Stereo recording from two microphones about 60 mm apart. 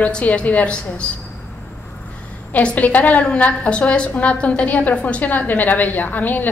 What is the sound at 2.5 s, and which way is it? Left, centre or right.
A woman's voice, left.